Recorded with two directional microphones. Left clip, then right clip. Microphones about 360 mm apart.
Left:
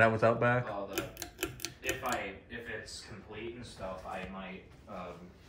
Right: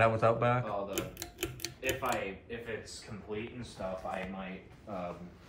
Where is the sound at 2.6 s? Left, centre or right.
Centre.